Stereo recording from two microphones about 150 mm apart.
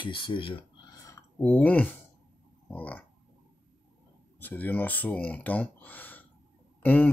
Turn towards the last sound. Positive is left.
turn(degrees=10)  # may be behind; listen again after turning